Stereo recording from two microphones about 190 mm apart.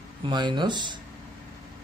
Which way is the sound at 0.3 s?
25° right (ahead or behind).